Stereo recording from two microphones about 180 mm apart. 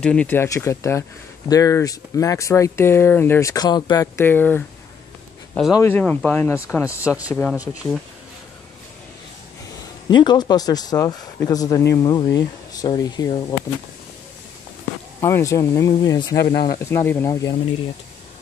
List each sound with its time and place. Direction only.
0.0 s speech: 5° left (ahead or behind)
5.7 s speech: 15° left (ahead or behind)
7.0 s speech: 10° right (ahead or behind)
7.7 s speech: 20° left (ahead or behind)
10.0 s speech: 25° left (ahead or behind)
15.1 s speech: 15° left (ahead or behind)
16.3 s speech: 65° left (ahead or behind)
16.9 s speech: 15° left (ahead or behind)